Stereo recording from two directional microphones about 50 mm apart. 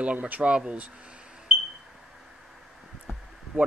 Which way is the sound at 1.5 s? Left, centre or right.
Centre.